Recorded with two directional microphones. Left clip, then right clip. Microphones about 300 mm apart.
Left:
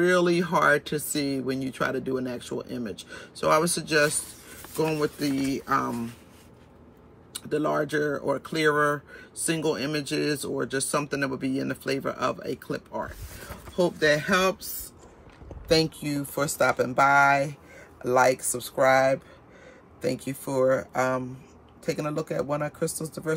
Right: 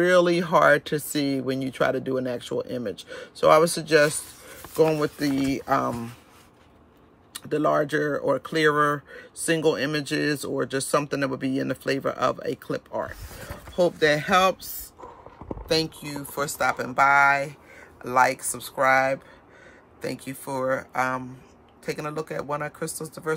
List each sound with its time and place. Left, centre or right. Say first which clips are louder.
0.0 s speech: right 3 dB; right
7.3 s speech: right 4 dB; right
15.7 s speech: left 2 dB; centre